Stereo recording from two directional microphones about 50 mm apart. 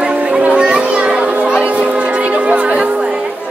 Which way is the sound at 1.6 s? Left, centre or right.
Right.